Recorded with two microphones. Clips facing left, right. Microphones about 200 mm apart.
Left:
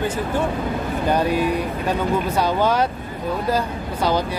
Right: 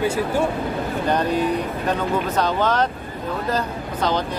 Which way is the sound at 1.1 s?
10° left (ahead or behind).